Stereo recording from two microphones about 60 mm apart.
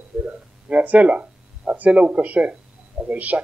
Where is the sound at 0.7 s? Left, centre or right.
Right.